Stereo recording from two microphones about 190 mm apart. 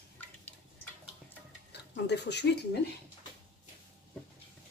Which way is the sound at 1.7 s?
60° left (ahead or behind).